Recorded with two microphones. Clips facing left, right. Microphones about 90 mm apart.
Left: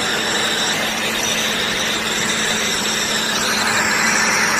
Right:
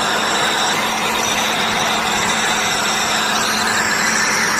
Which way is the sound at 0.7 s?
80° right.